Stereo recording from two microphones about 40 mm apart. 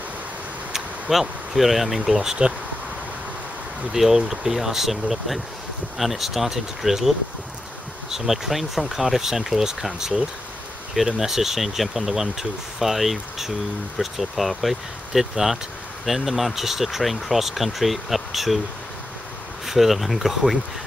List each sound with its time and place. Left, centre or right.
1.1 s speech: centre
3.9 s speech: centre
19.6 s speech: centre